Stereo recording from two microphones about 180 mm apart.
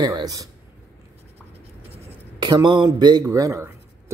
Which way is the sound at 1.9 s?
25° right (ahead or behind).